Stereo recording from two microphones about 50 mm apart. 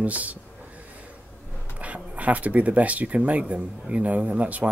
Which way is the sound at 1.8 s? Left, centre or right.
Right.